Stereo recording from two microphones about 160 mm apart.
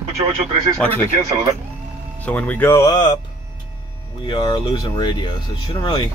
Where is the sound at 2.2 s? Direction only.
10° left (ahead or behind); by 3.1 s 25° left (ahead or behind).